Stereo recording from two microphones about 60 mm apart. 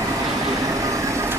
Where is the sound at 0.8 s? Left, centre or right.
Right.